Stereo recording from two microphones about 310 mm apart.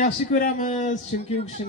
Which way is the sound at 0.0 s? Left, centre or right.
Left.